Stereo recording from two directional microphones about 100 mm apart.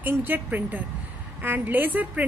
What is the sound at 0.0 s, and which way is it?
A woman's voice, 20° right (ahead or behind).